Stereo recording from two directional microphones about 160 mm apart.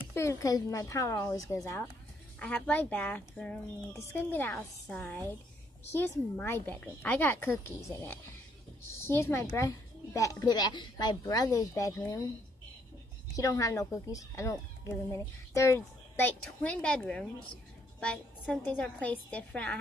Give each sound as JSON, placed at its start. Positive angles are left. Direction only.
{"t": 0.1, "sound": "a woman's voice", "side_deg": 15}
{"t": 2.3, "sound": "a woman's voice", "side_deg": 5}
{"t": 13.4, "sound": "a woman's voice", "side_deg": 20}